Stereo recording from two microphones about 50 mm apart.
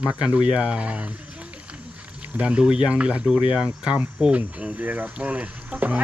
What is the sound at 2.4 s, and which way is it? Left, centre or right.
Speech, right.